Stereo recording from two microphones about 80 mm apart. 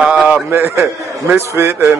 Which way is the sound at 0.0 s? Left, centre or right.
Centre.